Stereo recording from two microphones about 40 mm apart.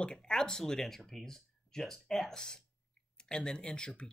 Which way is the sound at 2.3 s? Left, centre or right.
Centre.